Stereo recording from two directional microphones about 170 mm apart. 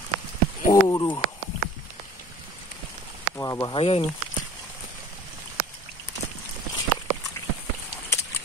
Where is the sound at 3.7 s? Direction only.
35° left (ahead or behind).